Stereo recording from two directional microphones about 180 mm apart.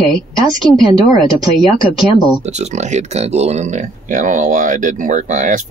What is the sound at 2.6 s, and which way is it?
Speech, 40° right (ahead or behind).